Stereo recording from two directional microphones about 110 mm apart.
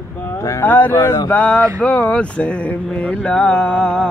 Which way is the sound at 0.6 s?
15° left (ahead or behind).